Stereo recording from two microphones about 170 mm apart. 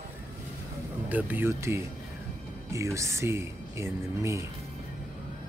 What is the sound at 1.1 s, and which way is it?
Speech, 10° right (ahead or behind).